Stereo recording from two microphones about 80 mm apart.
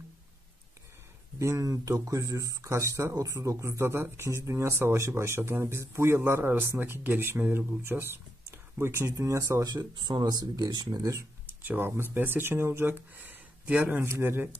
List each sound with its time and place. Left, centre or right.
1.4 s speech: right
9.7 s speech: right
11.6 s speech: right
14.0 s speech: right